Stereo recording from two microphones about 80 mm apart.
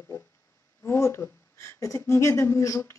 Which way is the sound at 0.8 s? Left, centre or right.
Left.